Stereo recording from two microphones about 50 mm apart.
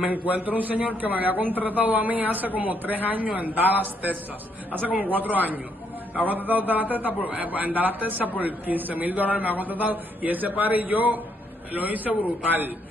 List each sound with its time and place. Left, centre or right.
0.1 s a man's voice: right